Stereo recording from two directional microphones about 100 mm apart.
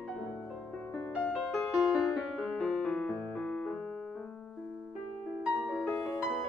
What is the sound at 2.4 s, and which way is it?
Piano, 5° left (ahead or behind).